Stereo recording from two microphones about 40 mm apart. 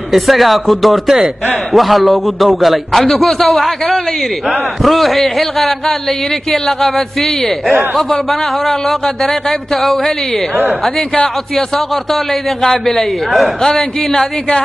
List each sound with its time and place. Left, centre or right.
0.1 s a man's voice: centre
4.8 s a man's voice: centre
12.6 s speech: centre